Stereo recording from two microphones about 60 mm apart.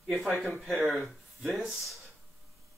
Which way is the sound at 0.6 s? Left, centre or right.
Centre.